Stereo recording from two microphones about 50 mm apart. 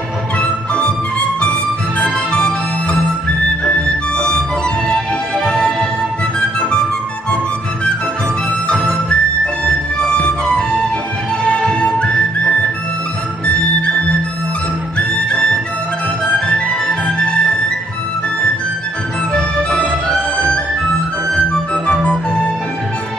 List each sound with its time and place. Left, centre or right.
0.4 s music: left
4.8 s music: centre
8.6 s music: centre
16.3 s music: centre
19.3 s music: centre
21.8 s music: left